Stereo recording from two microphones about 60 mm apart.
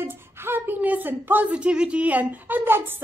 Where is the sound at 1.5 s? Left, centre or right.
Centre.